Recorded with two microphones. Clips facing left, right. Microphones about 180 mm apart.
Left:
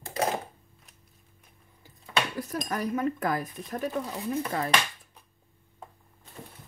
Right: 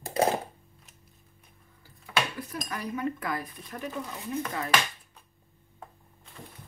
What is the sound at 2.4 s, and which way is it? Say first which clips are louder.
Speech: left 5 dB; 40° left (ahead or behind).